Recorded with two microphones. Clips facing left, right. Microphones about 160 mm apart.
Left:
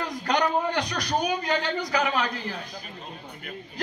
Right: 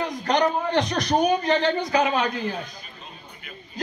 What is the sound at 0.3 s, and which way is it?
A man's voice, 25° right (ahead or behind).